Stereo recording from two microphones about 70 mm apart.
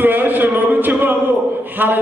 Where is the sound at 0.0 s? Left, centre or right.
Right.